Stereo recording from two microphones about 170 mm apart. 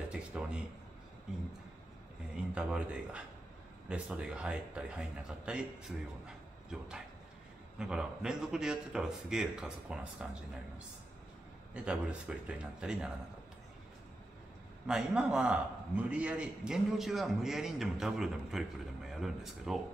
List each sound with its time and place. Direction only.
0.1 s a sound: 5° right (ahead or behind)
2.3 s a man's voice: 5° right (ahead or behind)
11.7 s a man's voice: 5° right (ahead or behind)
14.9 s a man's voice: 5° right (ahead or behind)